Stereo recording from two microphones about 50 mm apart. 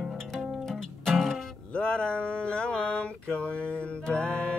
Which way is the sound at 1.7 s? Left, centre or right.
Centre.